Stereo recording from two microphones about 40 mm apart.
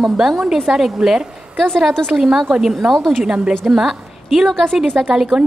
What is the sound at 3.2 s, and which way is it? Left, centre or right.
Speech, right.